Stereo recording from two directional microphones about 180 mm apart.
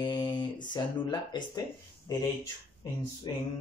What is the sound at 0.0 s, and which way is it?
Speech, 25° left (ahead or behind).